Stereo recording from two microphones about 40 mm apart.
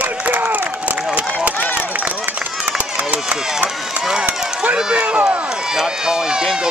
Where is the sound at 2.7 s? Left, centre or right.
Right.